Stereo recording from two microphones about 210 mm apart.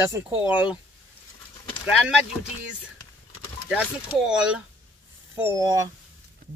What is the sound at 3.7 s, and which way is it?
Speech, 5° right (ahead or behind).